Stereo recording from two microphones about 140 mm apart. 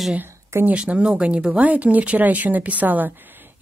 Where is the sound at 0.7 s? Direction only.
5° right (ahead or behind).